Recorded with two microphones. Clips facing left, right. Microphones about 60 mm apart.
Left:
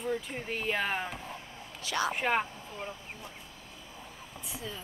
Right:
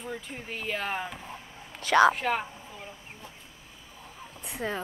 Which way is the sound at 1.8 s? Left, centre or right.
Right.